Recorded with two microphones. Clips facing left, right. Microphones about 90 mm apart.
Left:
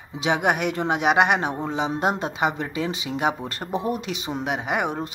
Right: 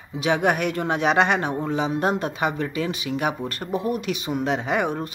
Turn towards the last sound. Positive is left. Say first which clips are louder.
# right 2 dB
turn(degrees=20)  # may be behind; listen again after turning